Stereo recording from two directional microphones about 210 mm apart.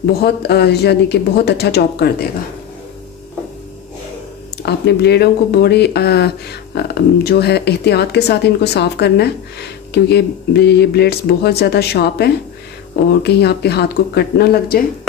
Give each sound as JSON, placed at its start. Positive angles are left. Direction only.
{"t": 0.0, "sound": "speech", "side_deg": 50}
{"t": 4.6, "sound": "speech", "side_deg": 50}